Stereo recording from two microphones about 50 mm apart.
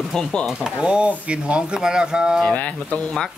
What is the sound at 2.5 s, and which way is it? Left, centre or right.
Speech, left.